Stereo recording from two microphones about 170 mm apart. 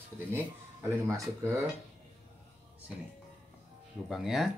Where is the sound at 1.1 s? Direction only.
15° right (ahead or behind).